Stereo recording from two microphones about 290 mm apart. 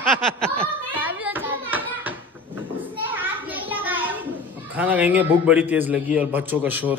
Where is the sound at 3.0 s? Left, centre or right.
Centre.